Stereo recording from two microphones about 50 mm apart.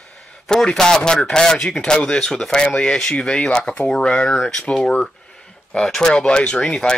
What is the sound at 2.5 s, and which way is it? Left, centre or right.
Speech, centre.